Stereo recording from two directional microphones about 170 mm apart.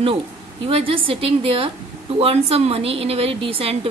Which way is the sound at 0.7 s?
35° right (ahead or behind).